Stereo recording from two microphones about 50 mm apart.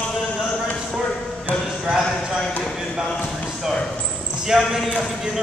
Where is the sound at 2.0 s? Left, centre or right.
Centre.